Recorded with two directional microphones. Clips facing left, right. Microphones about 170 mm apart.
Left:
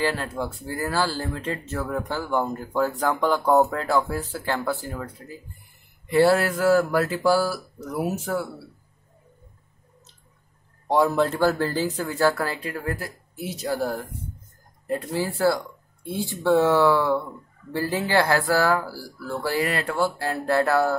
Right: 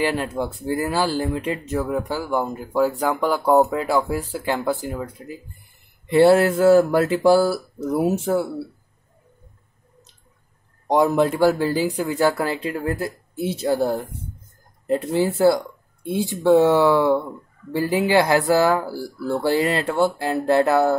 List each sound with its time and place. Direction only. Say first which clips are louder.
0.0 s speech: right 3 dB; 15° right (ahead or behind)
10.9 s speech: right 3 dB; 20° right (ahead or behind)